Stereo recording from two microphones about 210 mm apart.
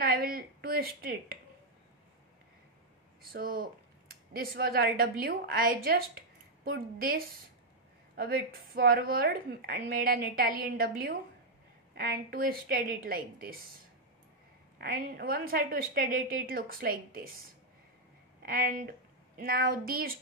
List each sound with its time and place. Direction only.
0.0 s a woman's voice: 45° right (ahead or behind)
4.4 s a woman's voice: 45° right (ahead or behind)
8.7 s a woman's voice: 45° right (ahead or behind)
14.8 s a woman's voice: 45° right (ahead or behind)